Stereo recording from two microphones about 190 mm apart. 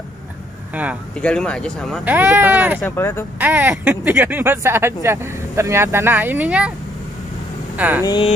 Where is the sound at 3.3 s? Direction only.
10° right (ahead or behind).